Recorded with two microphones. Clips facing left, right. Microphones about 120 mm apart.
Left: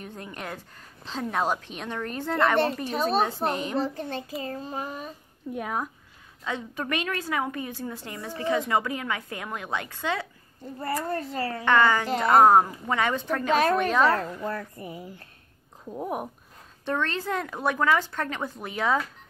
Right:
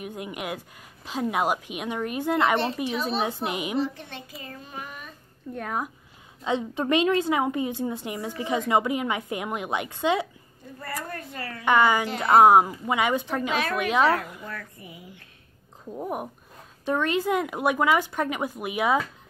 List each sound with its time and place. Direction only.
0.0 s speech: 10° right (ahead or behind)
2.9 s a woman's voice: 45° left (ahead or behind)
3.4 s speech: 10° right (ahead or behind)
3.8 s child singing: 40° left (ahead or behind)
5.5 s speech: 5° left (ahead or behind)
6.4 s a woman's voice: 20° right (ahead or behind)
11.1 s child singing: 30° left (ahead or behind)
11.6 s speech: 15° right (ahead or behind)
13.5 s child singing: 40° left (ahead or behind)
13.7 s speech: 10° right (ahead or behind)
14.0 s child singing: 35° left (ahead or behind)
15.9 s speech: centre (ahead or behind)
16.8 s speech: 10° right (ahead or behind)